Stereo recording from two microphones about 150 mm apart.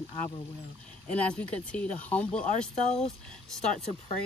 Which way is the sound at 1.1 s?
10° left (ahead or behind).